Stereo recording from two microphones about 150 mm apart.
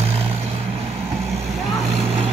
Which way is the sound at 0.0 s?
40° right (ahead or behind).